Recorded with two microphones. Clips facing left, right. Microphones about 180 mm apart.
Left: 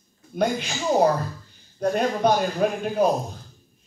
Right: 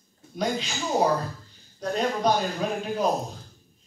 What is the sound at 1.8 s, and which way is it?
Speech, 55° left (ahead or behind).